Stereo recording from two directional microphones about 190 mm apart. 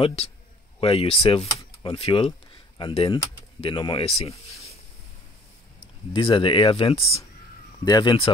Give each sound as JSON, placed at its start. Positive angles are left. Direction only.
{"t": 0.7, "sound": "speech", "side_deg": 30}
{"t": 6.1, "sound": "speech", "side_deg": 25}